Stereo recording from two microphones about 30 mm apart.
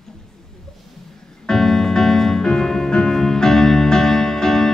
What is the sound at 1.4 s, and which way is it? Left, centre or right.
Music, centre.